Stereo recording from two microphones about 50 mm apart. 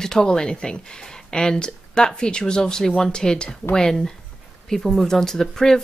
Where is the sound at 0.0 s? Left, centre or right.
Centre.